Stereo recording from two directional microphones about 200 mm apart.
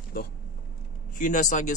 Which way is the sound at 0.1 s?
50° left (ahead or behind).